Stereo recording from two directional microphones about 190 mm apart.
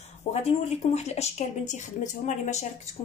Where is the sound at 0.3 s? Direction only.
35° left (ahead or behind).